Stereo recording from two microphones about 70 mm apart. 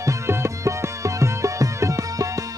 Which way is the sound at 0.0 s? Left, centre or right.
Right.